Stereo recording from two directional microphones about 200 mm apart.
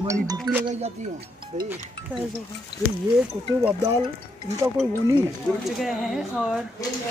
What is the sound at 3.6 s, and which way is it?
Speech, 15° right (ahead or behind).